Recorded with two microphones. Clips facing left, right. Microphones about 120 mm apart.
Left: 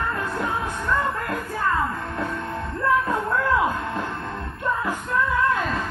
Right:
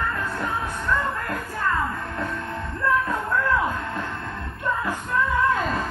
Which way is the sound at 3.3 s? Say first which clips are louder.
Left 1 dB; 25° left (ahead or behind).